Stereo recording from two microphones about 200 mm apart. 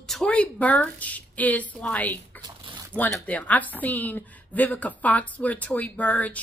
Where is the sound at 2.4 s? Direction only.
20° right (ahead or behind).